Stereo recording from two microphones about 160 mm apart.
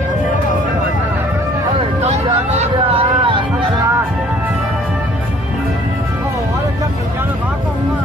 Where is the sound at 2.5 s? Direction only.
35° right (ahead or behind).